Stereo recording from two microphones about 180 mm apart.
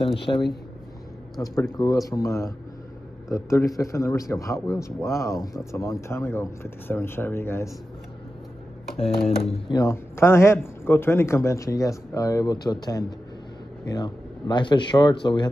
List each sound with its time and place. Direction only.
0.3 s a man's voice: 20° left (ahead or behind)
8.9 s speech: 30° left (ahead or behind)
9.8 s a man's voice: 15° left (ahead or behind)